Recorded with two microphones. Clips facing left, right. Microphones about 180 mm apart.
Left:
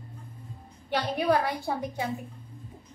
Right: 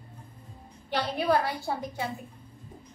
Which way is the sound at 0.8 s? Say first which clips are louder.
Left 1 dB; 15° left (ahead or behind).